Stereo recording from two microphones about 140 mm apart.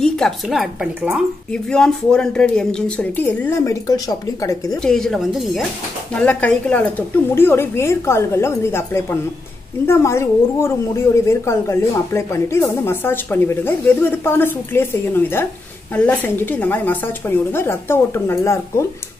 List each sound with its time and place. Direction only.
0.0 s a woman's voice: centre (ahead or behind); by 4.7 s 25° left (ahead or behind)
4.8 s speech: 5° left (ahead or behind); by 18.9 s 20° left (ahead or behind)